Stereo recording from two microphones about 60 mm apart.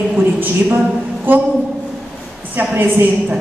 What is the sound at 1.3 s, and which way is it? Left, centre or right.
Speech, right.